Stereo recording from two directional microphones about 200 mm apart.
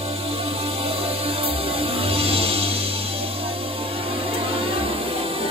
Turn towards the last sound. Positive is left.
turn(degrees=-30)  # may be behind; listen again after turning